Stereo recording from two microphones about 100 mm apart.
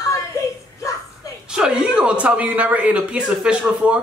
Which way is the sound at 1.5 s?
5° right (ahead or behind).